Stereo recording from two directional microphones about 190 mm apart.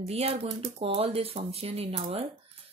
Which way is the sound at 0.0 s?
30° right (ahead or behind).